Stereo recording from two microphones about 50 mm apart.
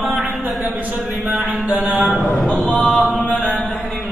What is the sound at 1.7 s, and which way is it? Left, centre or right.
Speech, right.